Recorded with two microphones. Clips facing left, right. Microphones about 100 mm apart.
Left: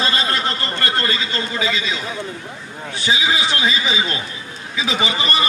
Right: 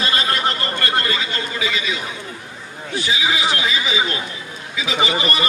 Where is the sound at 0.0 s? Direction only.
30° left (ahead or behind).